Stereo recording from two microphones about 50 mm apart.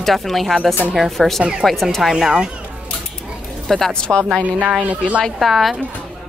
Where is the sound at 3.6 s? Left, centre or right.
Centre.